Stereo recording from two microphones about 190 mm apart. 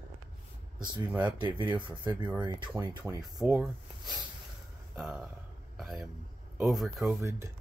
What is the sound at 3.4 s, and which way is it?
Speech, 5° right (ahead or behind).